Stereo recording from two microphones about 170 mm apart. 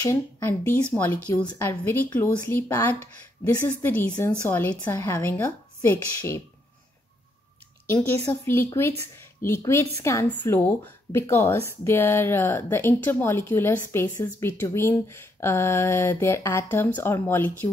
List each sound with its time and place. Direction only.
0.0 s speech: 15° left (ahead or behind)
7.8 s a woman's voice: 15° left (ahead or behind)